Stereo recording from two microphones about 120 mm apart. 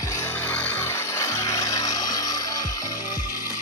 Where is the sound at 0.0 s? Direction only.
25° left (ahead or behind).